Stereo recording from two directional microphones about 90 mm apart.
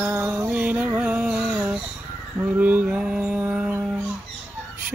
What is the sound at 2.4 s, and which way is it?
Mantra, 20° right (ahead or behind).